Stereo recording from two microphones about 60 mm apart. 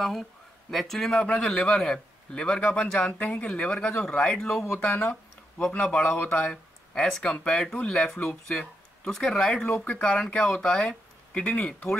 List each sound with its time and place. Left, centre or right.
0.0 s speech: centre
1.1 s a man's voice: centre
7.7 s a man's voice: left